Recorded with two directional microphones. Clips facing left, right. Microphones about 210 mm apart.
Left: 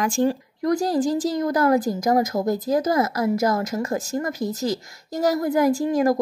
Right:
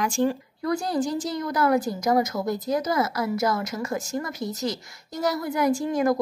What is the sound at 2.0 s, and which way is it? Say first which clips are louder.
A woman's voice: left 3 dB; 45° left (ahead or behind).